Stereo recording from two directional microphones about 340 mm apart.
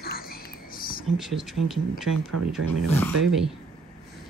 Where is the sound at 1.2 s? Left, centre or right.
Centre.